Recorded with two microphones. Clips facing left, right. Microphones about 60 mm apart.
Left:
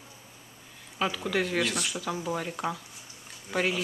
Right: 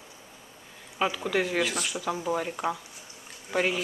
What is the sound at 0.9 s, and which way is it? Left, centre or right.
Speech, centre.